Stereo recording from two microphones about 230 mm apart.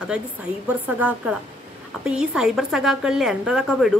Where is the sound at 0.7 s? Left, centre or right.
Centre.